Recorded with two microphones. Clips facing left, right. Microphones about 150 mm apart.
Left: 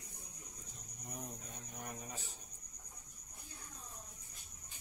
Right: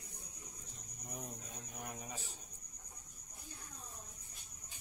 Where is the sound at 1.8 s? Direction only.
Centre (ahead or behind).